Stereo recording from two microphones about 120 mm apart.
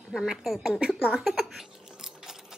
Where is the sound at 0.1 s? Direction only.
Centre (ahead or behind).